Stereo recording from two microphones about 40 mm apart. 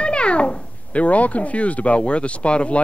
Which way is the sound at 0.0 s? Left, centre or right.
Left.